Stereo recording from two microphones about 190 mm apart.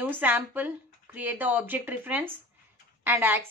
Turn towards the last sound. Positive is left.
turn(degrees=-10)  # may be behind; listen again after turning